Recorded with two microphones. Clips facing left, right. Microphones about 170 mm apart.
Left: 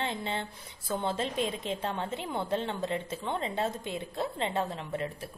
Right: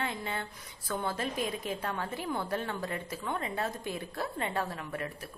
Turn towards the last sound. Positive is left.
turn(degrees=20)  # may be behind; listen again after turning